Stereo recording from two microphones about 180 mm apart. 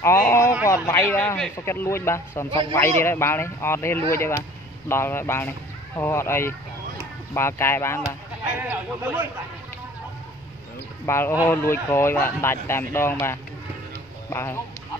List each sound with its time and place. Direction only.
0.0 s speech: 15° left (ahead or behind)
8.5 s speech: 10° right (ahead or behind)
11.1 s speech: 15° left (ahead or behind)